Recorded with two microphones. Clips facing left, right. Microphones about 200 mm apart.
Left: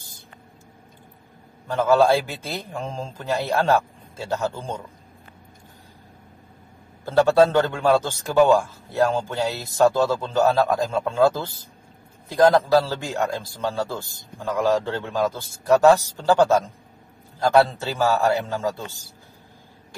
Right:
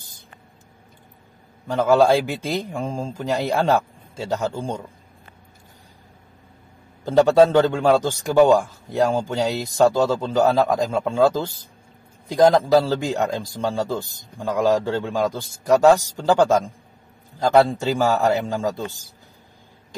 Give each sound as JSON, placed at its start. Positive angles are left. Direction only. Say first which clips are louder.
{"t": 1.7, "sound": "a man's voice", "louder": "right 2 dB", "side_deg": -15}
{"t": 7.1, "sound": "a man's voice", "louder": "right 2 dB", "side_deg": -15}